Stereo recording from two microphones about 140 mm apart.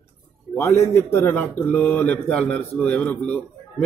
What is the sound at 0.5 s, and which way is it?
Speech, 20° left (ahead or behind).